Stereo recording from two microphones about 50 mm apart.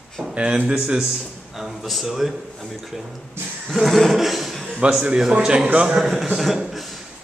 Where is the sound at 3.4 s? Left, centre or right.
Right.